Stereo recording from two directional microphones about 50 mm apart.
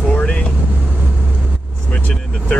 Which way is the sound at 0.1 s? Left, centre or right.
Centre.